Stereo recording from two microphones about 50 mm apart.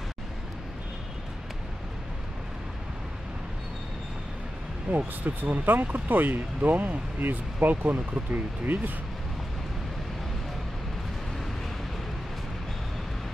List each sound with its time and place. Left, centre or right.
4.9 s speech: right